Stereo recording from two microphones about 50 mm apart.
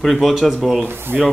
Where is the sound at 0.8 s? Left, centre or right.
Right.